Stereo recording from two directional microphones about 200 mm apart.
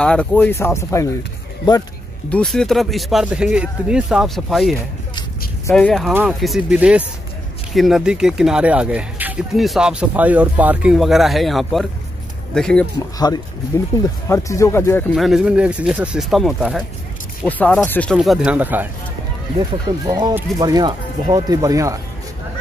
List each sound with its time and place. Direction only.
0.0 s speech: 5° left (ahead or behind)
2.2 s speech: 5° left (ahead or behind)
5.8 s speech: centre (ahead or behind)
13.2 s speech: 20° left (ahead or behind)
15.1 s speech: centre (ahead or behind)
19.6 s speech: 20° right (ahead or behind)